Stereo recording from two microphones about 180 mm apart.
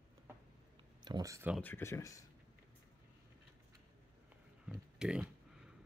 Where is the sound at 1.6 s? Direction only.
10° left (ahead or behind).